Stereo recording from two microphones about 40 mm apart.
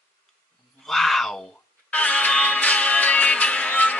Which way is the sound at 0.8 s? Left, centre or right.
Centre.